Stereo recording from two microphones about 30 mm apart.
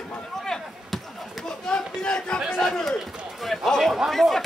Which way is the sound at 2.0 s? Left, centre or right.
Left.